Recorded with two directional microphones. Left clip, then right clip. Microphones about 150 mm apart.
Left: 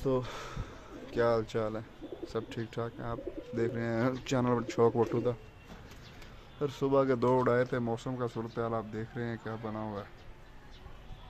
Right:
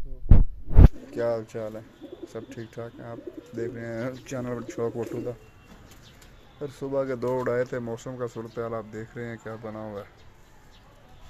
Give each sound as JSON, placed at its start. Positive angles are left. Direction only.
{"t": 1.1, "sound": "speech", "side_deg": 15}
{"t": 6.6, "sound": "speech", "side_deg": 20}
{"t": 7.3, "sound": "speech", "side_deg": 5}